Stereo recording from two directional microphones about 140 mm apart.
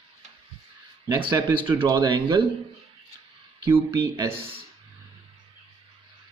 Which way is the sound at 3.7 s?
20° right (ahead or behind).